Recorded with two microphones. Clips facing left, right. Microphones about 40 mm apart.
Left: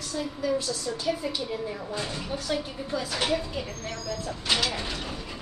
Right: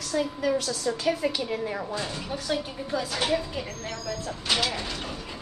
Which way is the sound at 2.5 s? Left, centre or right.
Centre.